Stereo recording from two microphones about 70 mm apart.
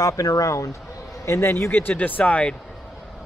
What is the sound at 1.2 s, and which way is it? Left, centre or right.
Speech, left.